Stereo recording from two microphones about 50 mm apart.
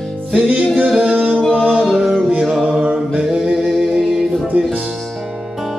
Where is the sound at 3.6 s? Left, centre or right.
Centre.